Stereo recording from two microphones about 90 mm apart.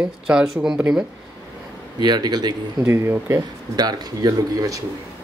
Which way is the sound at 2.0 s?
50° right (ahead or behind).